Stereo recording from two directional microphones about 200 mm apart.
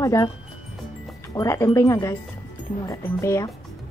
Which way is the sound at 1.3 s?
15° left (ahead or behind).